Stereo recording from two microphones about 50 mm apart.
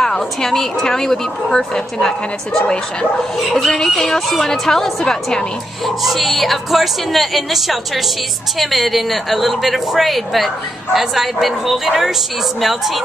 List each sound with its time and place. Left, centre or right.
0.0 s a woman's voice: centre
3.3 s a woman's voice: centre